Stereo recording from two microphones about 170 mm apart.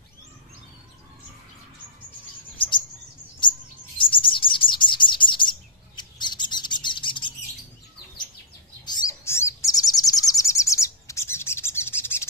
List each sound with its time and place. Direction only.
4.0 s chirp: 30° left (ahead or behind)
8.8 s bird: 25° left (ahead or behind)